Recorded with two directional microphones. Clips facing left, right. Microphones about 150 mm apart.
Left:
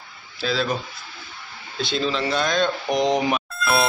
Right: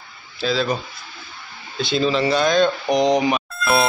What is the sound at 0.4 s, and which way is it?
Speech, centre (ahead or behind).